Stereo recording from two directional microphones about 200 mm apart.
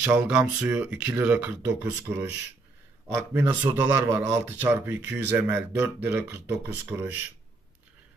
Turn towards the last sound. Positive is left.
turn(degrees=-10)  # may be behind; listen again after turning